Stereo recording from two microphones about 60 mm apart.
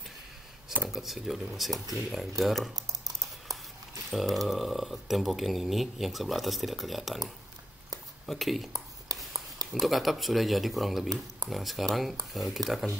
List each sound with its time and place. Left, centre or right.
0.8 s speech: centre
2.7 s typing: right
4.1 s speech: centre
8.3 s speech: centre
8.7 s a sound: right
9.8 s speech: centre